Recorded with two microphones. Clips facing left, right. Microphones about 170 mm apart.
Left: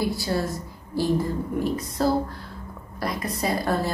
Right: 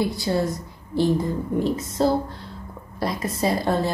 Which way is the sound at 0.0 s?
20° right (ahead or behind).